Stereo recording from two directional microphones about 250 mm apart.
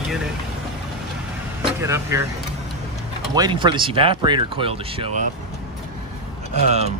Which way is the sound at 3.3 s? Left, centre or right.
Centre.